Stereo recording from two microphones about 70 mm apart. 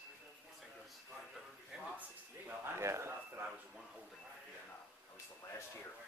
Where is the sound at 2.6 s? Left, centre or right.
Right.